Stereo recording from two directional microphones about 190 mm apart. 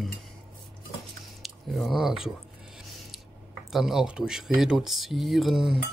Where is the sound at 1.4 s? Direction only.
Centre (ahead or behind).